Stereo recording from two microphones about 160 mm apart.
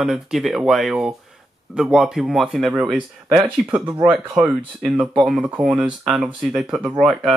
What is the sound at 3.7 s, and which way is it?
Speech, 15° right (ahead or behind).